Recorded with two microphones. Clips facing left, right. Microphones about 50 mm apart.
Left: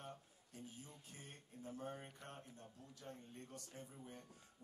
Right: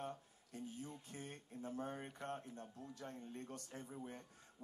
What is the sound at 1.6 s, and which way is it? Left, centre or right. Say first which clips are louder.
Speech: right 4 dB; right.